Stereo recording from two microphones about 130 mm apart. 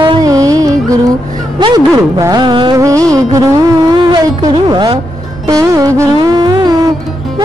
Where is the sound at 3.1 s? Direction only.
25° right (ahead or behind).